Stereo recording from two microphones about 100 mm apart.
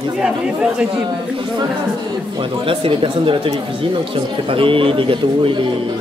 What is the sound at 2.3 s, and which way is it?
Speech, 55° right (ahead or behind).